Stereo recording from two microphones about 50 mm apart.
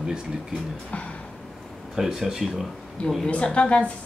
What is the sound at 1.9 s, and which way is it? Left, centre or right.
Speech, centre.